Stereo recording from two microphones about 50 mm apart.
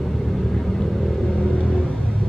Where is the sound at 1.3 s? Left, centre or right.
Centre.